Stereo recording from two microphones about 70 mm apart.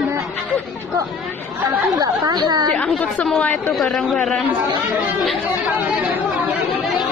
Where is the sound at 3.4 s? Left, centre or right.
Left.